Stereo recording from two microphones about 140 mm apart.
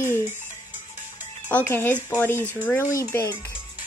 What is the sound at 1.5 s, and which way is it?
Speech, 15° left (ahead or behind).